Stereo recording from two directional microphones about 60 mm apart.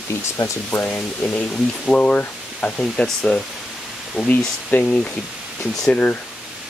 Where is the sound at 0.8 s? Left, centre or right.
Left.